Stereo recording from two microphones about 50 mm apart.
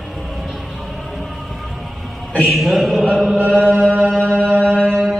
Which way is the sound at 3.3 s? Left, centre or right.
Right.